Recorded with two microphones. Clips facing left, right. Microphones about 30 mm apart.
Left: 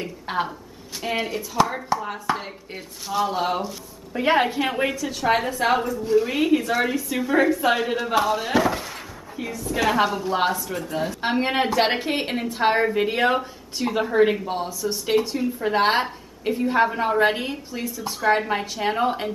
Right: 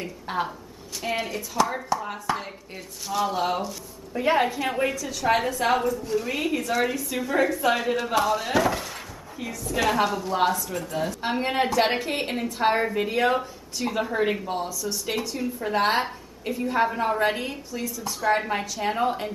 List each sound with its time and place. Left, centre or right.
0.3 s a woman's voice: left
1.0 s a woman's voice: centre
4.1 s a woman's voice: left